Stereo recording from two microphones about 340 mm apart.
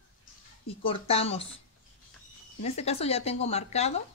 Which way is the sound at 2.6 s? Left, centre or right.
Centre.